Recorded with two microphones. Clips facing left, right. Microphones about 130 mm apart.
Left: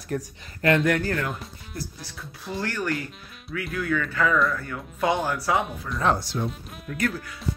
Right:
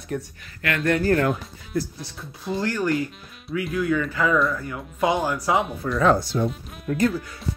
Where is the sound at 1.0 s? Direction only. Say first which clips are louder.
Right 8 dB; 45° right (ahead or behind).